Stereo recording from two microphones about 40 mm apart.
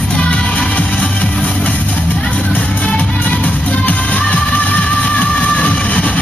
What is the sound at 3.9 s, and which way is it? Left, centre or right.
Music, left.